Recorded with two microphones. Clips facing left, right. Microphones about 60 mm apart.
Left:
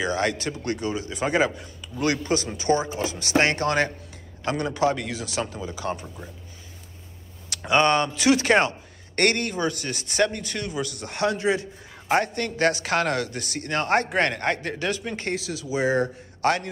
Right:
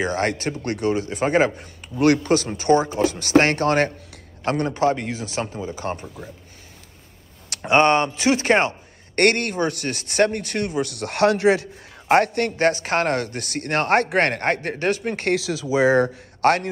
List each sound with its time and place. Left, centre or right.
0.0 s speech: right
7.5 s speech: right
9.2 s speech: right
12.1 s speech: right
15.2 s speech: right
16.3 s a sound: right